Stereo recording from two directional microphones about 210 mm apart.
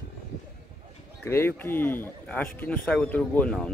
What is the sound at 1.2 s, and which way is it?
Speech, 10° left (ahead or behind).